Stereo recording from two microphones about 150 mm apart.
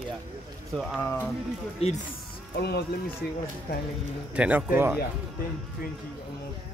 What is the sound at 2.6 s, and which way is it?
Speech, 90° left.